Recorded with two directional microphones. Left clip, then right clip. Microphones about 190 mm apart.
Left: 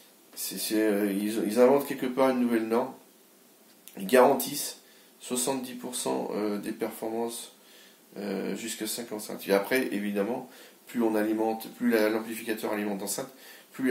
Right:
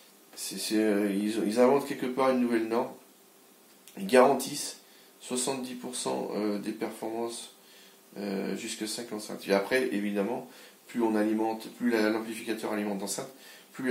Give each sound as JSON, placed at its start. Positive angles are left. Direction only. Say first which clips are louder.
{"t": 0.4, "sound": "speech", "louder": "left 1 dB", "side_deg": 35}
{"t": 3.9, "sound": "speech", "louder": "left 1 dB", "side_deg": 35}